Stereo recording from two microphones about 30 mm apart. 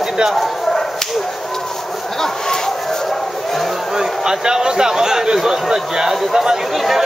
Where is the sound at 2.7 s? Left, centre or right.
Centre.